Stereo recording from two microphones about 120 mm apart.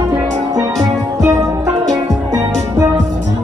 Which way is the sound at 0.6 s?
25° right (ahead or behind).